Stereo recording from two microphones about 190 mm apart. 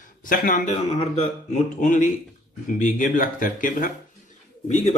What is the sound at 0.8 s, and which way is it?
A man's voice, 35° left (ahead or behind).